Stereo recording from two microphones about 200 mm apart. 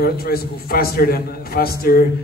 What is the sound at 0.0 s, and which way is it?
A man's voice, 50° left (ahead or behind).